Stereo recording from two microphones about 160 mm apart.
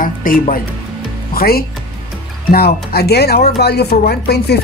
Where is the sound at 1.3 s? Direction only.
70° left (ahead or behind).